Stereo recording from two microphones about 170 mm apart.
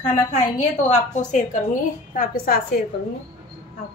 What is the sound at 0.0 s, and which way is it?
A woman's voice, 45° left (ahead or behind).